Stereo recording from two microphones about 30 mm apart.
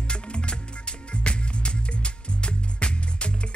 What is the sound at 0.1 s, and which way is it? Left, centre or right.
Music, left.